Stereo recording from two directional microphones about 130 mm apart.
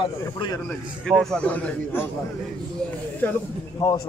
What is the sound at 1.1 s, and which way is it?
A man's voice, 5° left (ahead or behind).